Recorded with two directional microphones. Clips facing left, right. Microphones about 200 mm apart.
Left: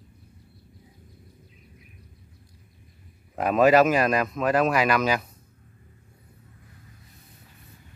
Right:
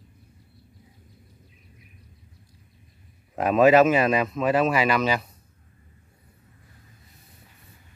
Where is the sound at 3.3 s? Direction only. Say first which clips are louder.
Right 1 dB; centre (ahead or behind).